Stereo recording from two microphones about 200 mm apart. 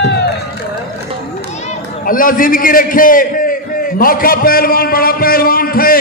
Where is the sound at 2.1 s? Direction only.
45° left (ahead or behind).